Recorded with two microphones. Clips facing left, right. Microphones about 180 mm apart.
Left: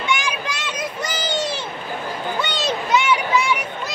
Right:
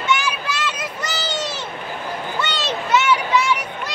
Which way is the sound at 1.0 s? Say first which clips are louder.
Left 1 dB; 10° left (ahead or behind).